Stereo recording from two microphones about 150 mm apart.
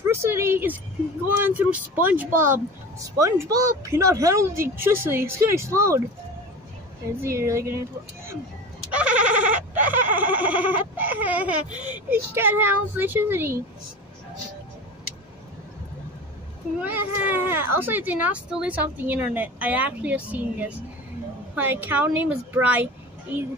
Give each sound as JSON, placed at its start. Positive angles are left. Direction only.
{"t": 0.0, "sound": "a woman's voice", "side_deg": -15}
{"t": 7.2, "sound": "speech", "side_deg": -20}
{"t": 8.9, "sound": "bleat", "side_deg": -10}
{"t": 16.8, "sound": "speech", "side_deg": -15}